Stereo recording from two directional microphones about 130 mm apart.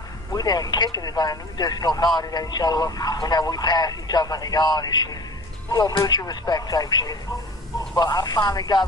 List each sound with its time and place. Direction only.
0.3 s speech: 30° left (ahead or behind)